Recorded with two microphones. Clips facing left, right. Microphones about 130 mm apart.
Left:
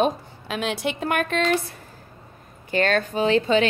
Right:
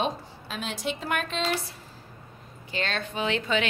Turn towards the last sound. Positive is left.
turn(degrees=35)  # may be behind; listen again after turning